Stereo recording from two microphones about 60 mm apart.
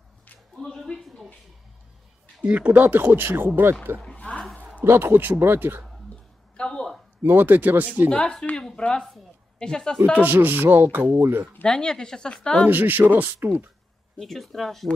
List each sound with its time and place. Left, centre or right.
0.6 s a sound: centre
2.4 s speech: right
4.0 s a sound: centre
4.8 s speech: right
6.5 s a sound: centre
7.2 s speech: right
8.1 s speech: centre
10.1 s speech: right
11.6 s speech: centre
12.6 s speech: right
14.2 s speech: centre